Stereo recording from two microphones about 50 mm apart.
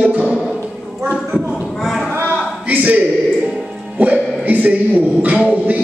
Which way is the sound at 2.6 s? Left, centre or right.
Right.